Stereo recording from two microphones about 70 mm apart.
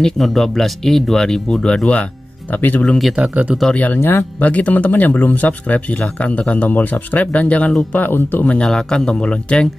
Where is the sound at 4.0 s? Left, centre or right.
Left.